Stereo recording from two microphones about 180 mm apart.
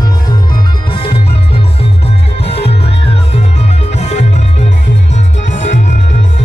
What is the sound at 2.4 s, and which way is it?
Music, 35° left (ahead or behind).